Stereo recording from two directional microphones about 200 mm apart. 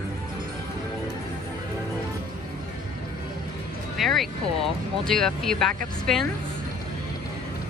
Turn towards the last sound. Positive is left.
turn(degrees=0)  # may be behind; listen again after turning